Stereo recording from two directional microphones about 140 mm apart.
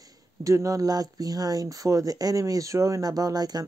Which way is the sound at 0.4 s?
25° right (ahead or behind).